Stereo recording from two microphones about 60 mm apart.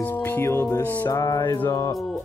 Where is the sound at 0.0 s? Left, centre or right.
Left.